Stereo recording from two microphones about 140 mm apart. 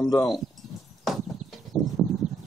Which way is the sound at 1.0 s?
Centre (ahead or behind).